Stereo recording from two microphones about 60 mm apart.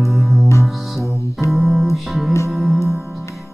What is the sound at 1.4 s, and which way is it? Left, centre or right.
Music, centre.